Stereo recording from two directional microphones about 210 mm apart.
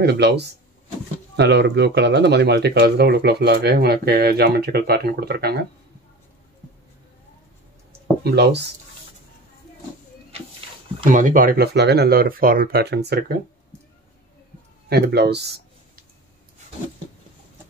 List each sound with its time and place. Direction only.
0.0 s speech: 50° right (ahead or behind)
8.2 s speech: 50° right (ahead or behind)
11.1 s speech: 40° right (ahead or behind)
14.9 s speech: 50° right (ahead or behind)